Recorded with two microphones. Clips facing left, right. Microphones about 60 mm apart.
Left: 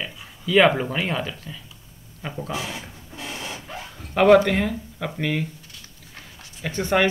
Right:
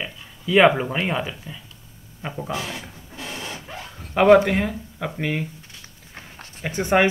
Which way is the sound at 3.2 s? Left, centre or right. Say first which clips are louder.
Even; centre.